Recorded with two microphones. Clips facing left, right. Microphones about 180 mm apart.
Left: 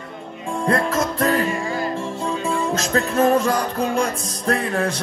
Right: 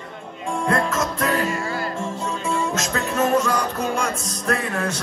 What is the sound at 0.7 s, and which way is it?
Music, 35° left (ahead or behind).